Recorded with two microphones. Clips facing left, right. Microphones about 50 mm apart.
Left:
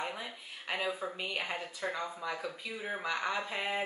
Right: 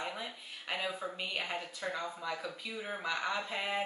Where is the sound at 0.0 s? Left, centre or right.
Centre.